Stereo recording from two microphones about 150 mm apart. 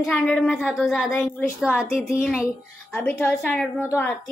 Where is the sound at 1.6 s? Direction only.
5° right (ahead or behind).